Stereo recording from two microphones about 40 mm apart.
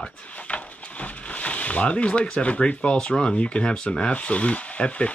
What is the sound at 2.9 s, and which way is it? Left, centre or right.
Speech, left.